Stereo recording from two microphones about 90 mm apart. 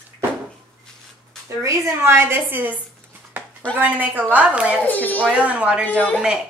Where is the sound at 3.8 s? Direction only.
20° right (ahead or behind).